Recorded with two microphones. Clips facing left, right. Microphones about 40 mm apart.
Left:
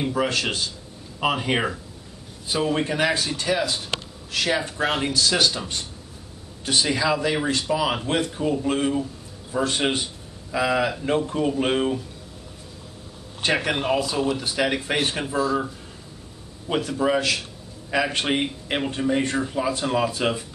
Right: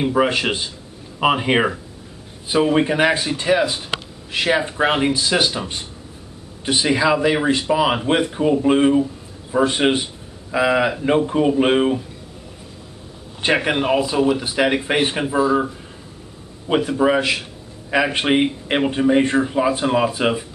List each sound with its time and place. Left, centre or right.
0.0 s speech: right
13.4 s speech: right